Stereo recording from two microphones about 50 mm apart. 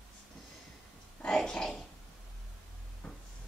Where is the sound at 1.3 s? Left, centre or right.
Centre.